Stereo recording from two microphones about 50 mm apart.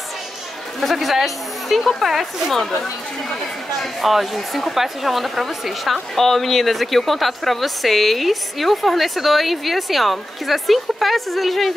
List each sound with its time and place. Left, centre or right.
0.7 s speech: centre
3.8 s speech: centre